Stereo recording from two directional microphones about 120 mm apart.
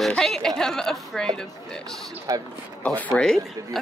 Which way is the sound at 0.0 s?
5° left (ahead or behind).